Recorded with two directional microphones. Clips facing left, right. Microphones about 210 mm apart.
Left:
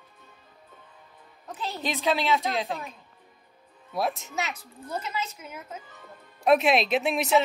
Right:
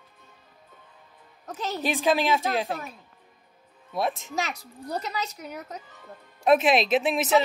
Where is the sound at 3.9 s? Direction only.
Centre (ahead or behind).